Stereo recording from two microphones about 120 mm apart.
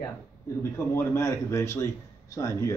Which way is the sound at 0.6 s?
20° left (ahead or behind).